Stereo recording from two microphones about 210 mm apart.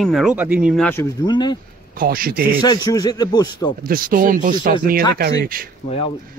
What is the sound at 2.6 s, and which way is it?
Speech, 20° left (ahead or behind).